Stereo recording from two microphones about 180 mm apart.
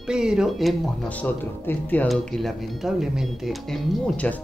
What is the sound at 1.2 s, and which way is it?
Speech, 10° left (ahead or behind).